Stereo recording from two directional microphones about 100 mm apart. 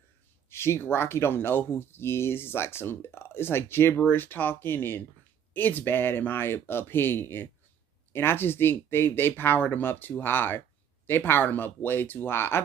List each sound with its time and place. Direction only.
0.5 s speech: 25° left (ahead or behind)